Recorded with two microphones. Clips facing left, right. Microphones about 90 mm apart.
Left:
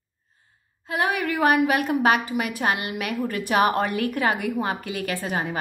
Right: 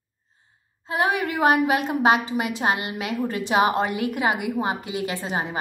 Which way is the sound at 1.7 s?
25° right (ahead or behind).